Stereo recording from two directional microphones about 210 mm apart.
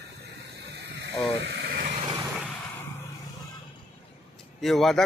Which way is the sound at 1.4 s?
50° right (ahead or behind).